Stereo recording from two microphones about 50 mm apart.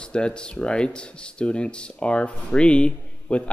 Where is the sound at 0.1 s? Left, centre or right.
Centre.